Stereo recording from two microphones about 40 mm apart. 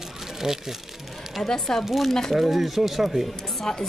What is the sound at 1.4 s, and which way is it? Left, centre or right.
Speech, centre.